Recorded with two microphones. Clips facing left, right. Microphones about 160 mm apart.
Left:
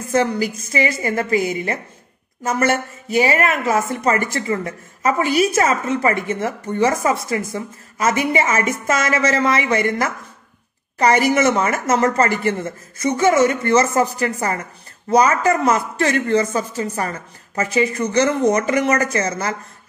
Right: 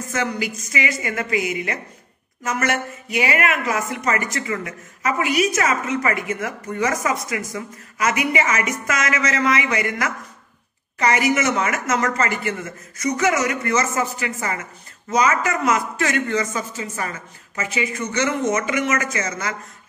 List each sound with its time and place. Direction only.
0.1 s speech: 35° left (ahead or behind)